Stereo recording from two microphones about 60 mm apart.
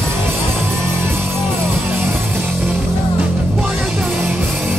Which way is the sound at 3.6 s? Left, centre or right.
Centre.